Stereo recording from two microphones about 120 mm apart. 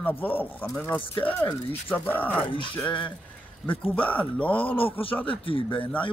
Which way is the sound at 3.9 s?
10° left (ahead or behind).